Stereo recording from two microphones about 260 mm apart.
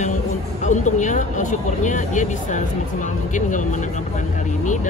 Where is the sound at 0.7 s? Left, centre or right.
Left.